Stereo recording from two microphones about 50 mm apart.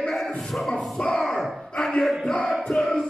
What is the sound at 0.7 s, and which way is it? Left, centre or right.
Speech, centre.